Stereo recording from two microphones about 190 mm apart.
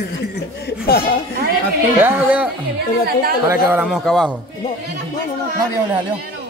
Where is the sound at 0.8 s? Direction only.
55° left (ahead or behind).